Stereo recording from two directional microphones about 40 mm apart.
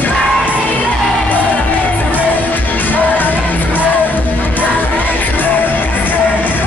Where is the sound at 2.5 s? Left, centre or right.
Left.